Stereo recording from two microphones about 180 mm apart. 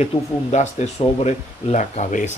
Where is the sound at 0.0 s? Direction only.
40° left (ahead or behind).